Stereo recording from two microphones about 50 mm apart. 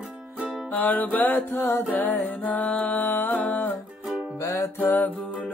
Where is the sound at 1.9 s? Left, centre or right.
Left.